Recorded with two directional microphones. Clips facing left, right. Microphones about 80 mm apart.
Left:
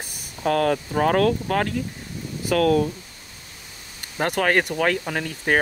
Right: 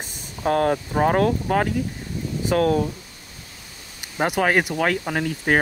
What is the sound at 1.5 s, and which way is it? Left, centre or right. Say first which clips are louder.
Speech: right 2 dB; centre.